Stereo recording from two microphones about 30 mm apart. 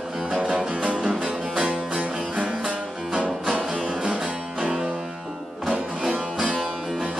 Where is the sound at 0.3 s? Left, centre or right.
Right.